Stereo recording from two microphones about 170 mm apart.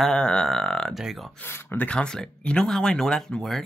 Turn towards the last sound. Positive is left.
turn(degrees=0)  # may be behind; listen again after turning